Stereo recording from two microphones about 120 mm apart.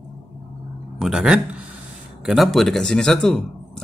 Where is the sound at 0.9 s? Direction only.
5° right (ahead or behind).